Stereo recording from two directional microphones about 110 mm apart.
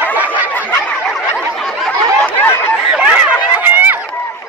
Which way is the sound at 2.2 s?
15° left (ahead or behind).